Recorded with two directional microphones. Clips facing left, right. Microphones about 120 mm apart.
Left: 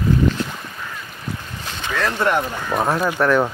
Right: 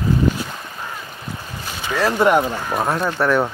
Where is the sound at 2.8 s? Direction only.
Centre (ahead or behind).